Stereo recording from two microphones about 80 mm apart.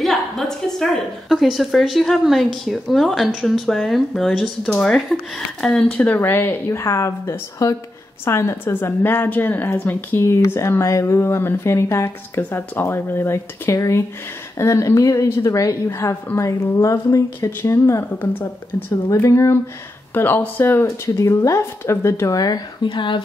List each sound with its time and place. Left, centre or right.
0.0 s a woman's voice: centre
6.0 s a woman's voice: left
19.2 s a woman's voice: left
21.0 s a woman's voice: left
22.8 s speech: left